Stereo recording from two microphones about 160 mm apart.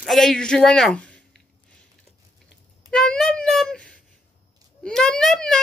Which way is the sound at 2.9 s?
5° left (ahead or behind).